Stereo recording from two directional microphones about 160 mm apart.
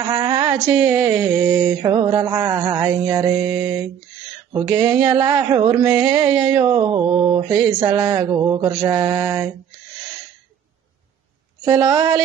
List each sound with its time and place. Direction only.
0.0 s a sound: 25° right (ahead or behind)
0.6 s a sound: 5° right (ahead or behind)
0.9 s mantra: 10° right (ahead or behind)
1.5 s mantra: 25° right (ahead or behind)
4.6 s mantra: 25° right (ahead or behind)
5.0 s mantra: 30° right (ahead or behind)
11.6 s mantra: 25° right (ahead or behind)